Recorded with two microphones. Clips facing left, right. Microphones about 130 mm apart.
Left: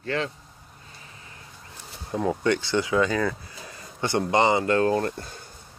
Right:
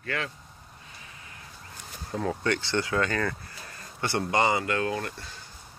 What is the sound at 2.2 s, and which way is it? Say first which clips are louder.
Speech: left 5 dB; 20° left (ahead or behind).